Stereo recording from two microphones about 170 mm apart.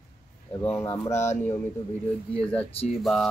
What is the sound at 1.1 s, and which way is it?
Speech, 40° left (ahead or behind).